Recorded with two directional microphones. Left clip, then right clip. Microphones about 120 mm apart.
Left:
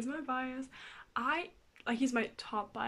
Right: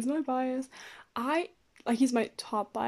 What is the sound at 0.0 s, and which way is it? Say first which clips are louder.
Speech: right 7 dB; 40° right (ahead or behind).